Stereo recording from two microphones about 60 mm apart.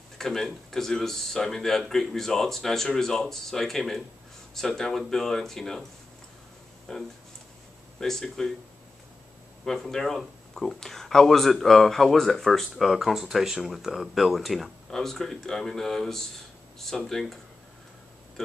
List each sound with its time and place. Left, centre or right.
0.2 s speech: centre
6.9 s speech: centre
9.7 s speech: centre